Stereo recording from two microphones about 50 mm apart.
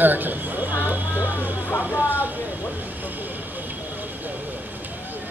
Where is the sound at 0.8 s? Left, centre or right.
Right.